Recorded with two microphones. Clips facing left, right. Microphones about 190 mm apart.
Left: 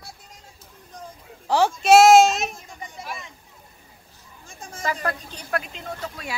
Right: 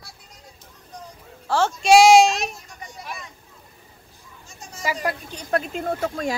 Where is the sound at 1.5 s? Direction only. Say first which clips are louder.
Left 2 dB; 15° left (ahead or behind).